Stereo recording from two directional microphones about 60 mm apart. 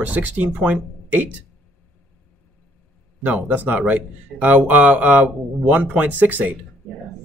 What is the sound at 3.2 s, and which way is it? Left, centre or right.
Speech, right.